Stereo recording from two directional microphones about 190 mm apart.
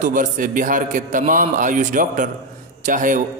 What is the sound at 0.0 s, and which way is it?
A man's voice, 45° right (ahead or behind).